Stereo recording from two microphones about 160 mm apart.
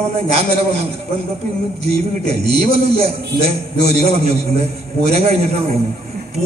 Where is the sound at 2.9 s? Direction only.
40° right (ahead or behind).